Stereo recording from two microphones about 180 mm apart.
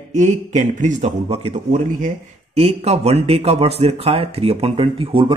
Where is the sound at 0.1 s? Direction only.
40° right (ahead or behind).